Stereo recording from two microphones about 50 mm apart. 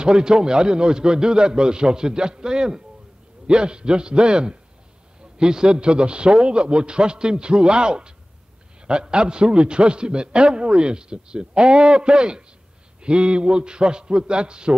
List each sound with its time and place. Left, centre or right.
0.0 s a man's voice: centre